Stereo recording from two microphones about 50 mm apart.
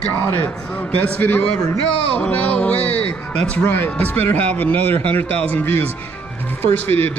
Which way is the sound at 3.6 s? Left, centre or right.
Left.